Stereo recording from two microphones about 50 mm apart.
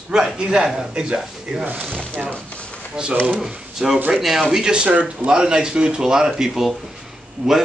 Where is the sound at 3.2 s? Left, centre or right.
Centre.